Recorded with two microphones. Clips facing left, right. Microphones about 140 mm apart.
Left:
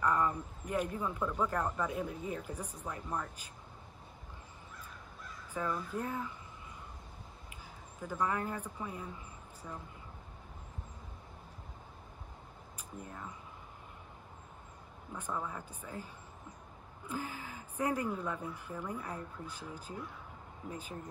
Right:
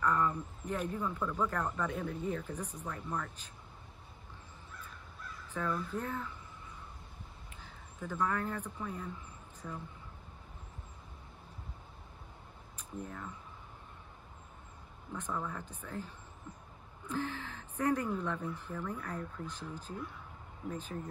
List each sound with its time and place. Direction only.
0.0 s speech: 10° left (ahead or behind)
5.5 s speech: 10° left (ahead or behind)
7.4 s a man's voice: 10° left (ahead or behind)
12.7 s speech: 10° left (ahead or behind)
15.1 s speech: 10° left (ahead or behind)
17.1 s speech: 10° left (ahead or behind)